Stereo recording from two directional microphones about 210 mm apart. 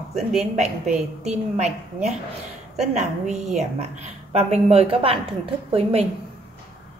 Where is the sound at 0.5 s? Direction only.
35° right (ahead or behind).